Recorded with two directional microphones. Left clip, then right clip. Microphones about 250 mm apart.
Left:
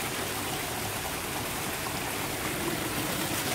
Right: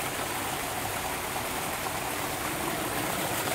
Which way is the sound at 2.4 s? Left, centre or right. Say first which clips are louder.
Right 1 dB; right.